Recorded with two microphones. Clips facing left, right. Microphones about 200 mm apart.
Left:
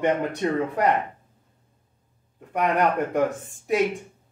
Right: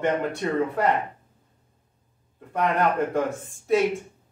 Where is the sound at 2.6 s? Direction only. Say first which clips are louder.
Left 1 dB; 15° left (ahead or behind).